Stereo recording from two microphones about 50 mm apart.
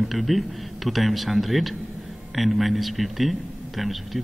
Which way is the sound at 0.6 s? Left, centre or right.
Centre.